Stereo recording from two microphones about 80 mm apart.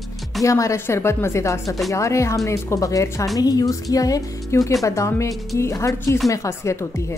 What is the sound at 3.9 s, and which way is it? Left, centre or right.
Music, left.